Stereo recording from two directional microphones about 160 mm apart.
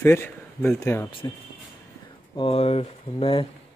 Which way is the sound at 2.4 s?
40° left (ahead or behind).